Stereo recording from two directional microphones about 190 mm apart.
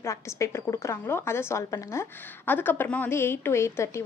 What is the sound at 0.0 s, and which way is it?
A woman's voice, 15° left (ahead or behind).